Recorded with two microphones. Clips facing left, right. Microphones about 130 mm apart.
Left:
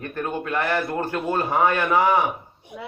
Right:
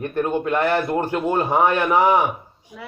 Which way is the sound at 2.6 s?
60° left (ahead or behind).